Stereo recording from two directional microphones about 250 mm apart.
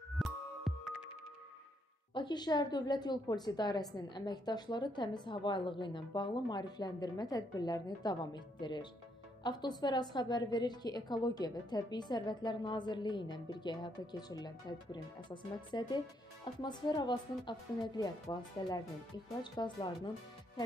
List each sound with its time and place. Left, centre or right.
0.2 s music: centre
2.1 s a woman's voice: centre